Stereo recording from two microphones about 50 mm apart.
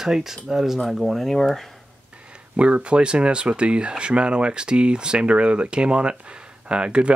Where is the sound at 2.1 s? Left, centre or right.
Right.